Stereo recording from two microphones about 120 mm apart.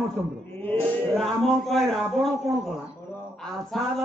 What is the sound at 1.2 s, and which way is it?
Speech, centre (ahead or behind).